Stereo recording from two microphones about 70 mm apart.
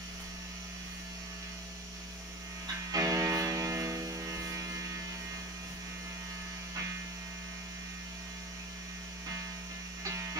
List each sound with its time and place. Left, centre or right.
2.9 s music: right